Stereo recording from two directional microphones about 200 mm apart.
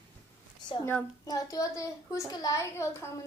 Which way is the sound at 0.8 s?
15° left (ahead or behind).